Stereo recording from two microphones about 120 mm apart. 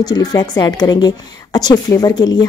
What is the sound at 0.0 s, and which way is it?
A woman's voice, 30° left (ahead or behind).